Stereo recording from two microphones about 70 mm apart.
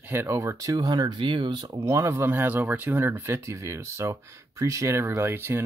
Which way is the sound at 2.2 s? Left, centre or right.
Right.